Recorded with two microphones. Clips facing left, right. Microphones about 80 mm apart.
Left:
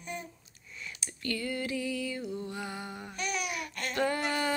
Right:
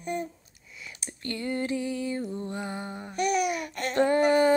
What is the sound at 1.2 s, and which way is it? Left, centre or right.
Mantra, right.